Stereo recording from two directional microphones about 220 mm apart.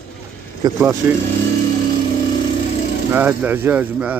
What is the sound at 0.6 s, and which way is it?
Speech, 20° right (ahead or behind).